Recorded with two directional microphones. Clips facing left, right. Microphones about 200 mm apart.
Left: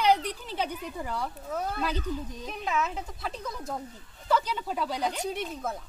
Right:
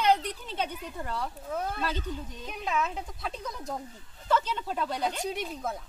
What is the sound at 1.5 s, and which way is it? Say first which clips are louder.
Speech: left 1 dB; centre (ahead or behind).